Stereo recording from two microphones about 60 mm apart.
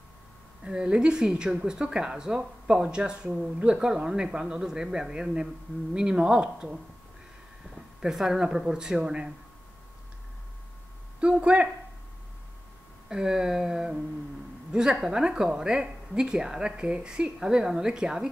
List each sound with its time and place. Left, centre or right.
0.7 s speech: centre
8.0 s speech: centre
11.1 s speech: centre
13.1 s speech: centre